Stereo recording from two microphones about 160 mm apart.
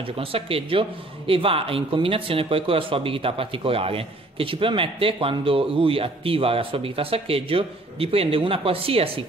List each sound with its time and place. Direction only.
0.0 s speech: 35° right (ahead or behind)